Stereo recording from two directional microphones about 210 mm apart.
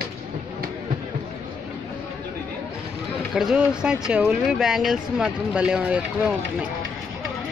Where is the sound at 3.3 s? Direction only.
Centre (ahead or behind).